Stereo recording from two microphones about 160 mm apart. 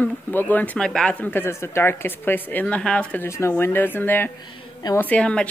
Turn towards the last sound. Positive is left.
turn(degrees=5)  # may be behind; listen again after turning